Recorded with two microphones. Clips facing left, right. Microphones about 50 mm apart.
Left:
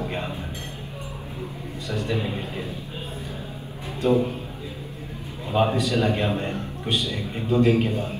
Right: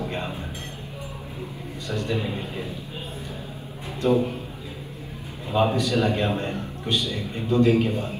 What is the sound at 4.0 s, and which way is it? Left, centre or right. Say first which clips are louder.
Speech: even; left.